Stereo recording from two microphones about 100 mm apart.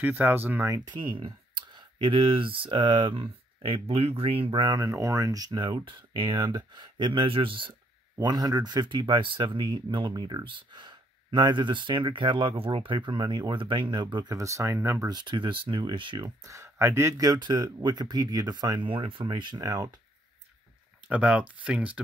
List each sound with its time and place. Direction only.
0.0 s speech: 15° right (ahead or behind)
0.8 s speech: 55° right (ahead or behind)
4.7 s speech: 30° right (ahead or behind)
5.7 s speech: 60° right (ahead or behind)
8.2 s speech: 40° right (ahead or behind)
14.4 s speech: 30° right (ahead or behind)
15.0 s speech: 50° right (ahead or behind)
16.4 s speech: 30° right (ahead or behind)
17.3 s speech: 45° right (ahead or behind)
18.9 s speech: 60° right (ahead or behind); by 19.9 s 40° right (ahead or behind)
21.1 s speech: 15° right (ahead or behind)